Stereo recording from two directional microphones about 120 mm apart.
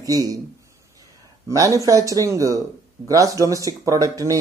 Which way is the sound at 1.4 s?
30° right (ahead or behind).